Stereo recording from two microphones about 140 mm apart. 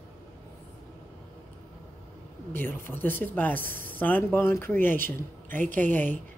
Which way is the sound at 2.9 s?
15° left (ahead or behind).